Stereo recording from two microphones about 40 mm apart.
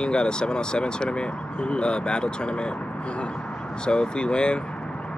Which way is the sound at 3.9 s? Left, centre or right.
Left.